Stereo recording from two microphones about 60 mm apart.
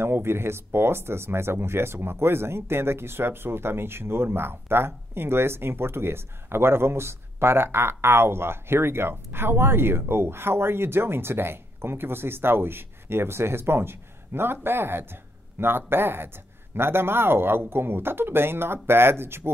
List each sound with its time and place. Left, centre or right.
0.0 s speech: right